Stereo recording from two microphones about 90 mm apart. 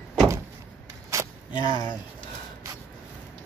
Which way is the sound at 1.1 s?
35° right (ahead or behind).